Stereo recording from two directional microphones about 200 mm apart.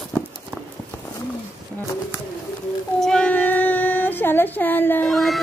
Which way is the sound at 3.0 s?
5° left (ahead or behind).